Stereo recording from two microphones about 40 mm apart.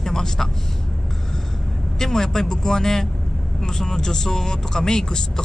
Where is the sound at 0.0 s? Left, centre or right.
Centre.